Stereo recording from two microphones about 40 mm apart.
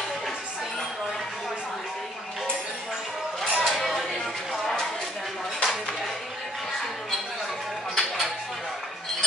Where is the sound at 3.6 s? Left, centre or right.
Centre.